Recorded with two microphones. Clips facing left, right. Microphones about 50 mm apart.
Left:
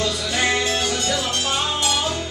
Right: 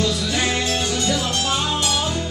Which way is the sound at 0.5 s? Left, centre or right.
Left.